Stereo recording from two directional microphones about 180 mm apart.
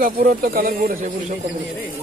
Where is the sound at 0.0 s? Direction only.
55° right (ahead or behind).